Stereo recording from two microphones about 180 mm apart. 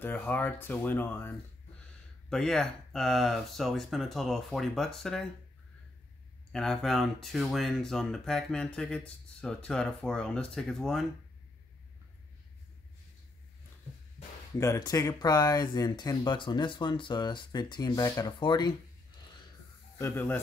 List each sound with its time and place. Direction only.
0.0 s speech: 10° left (ahead or behind)
6.5 s speech: centre (ahead or behind)
14.6 s speech: 20° left (ahead or behind)
20.0 s speech: 10° left (ahead or behind)